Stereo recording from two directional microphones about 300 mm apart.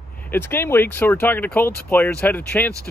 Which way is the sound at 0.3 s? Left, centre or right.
Centre.